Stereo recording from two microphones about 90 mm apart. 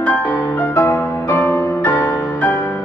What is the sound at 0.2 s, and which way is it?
Music, 50° left (ahead or behind).